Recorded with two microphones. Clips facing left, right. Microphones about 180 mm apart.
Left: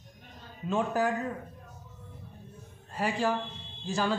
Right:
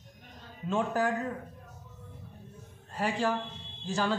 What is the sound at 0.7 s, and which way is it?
Speech, 5° left (ahead or behind).